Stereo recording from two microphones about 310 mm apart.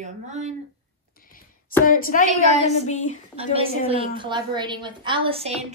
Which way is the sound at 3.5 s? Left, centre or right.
Centre.